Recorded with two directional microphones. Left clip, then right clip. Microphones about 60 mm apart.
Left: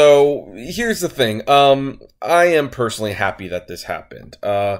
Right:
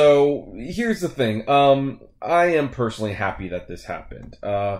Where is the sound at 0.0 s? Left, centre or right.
Left.